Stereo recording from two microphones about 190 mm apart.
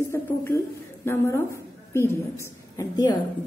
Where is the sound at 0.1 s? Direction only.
15° left (ahead or behind).